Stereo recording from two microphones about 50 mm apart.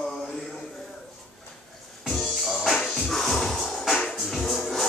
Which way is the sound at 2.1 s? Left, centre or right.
Centre.